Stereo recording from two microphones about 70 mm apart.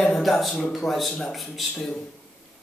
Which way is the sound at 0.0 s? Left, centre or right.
Centre.